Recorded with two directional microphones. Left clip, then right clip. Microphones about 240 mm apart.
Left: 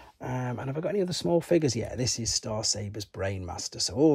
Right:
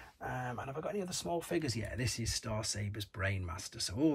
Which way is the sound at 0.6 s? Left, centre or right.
Left.